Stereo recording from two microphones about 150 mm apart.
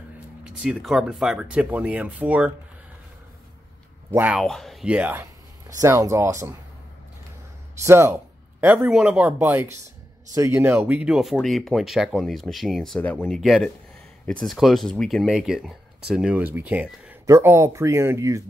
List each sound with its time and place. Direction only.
0.4 s speech: 5° right (ahead or behind)
4.1 s speech: 10° right (ahead or behind)
4.4 s speech: centre (ahead or behind)
5.8 s speech: 20° right (ahead or behind)
7.8 s speech: 15° right (ahead or behind)